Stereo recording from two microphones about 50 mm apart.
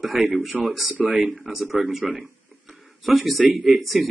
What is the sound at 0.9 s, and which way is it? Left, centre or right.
Speech, right.